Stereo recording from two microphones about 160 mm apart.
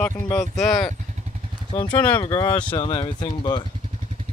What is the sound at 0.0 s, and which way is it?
Speech, 20° left (ahead or behind).